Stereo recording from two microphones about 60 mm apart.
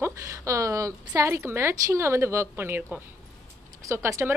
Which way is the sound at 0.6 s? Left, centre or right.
Right.